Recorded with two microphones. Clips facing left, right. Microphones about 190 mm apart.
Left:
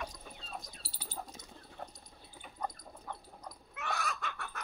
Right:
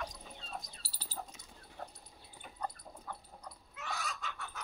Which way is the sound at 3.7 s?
60° left (ahead or behind).